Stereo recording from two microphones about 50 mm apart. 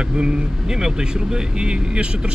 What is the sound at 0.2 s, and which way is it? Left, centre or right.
Speech, centre.